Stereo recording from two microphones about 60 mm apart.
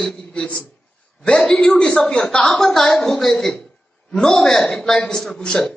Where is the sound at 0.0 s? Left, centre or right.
Centre.